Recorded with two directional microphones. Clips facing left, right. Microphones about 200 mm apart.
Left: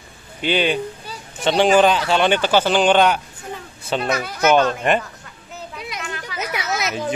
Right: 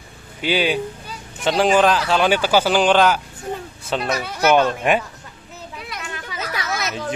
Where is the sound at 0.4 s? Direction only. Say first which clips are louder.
Even; 5° right (ahead or behind).